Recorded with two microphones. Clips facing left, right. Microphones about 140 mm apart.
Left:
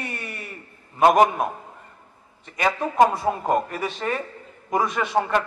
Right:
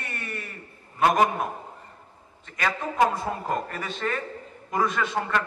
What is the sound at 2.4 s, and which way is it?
A man's voice, 15° left (ahead or behind).